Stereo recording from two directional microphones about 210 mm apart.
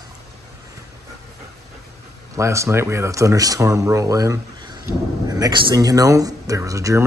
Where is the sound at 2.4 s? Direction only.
15° right (ahead or behind).